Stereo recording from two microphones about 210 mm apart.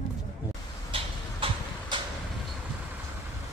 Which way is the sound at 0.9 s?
25° right (ahead or behind).